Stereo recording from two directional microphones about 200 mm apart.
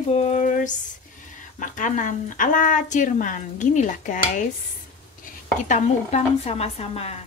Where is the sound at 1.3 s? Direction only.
40° left (ahead or behind).